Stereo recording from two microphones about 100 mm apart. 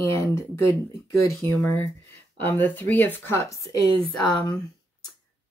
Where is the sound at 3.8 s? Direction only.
65° right (ahead or behind).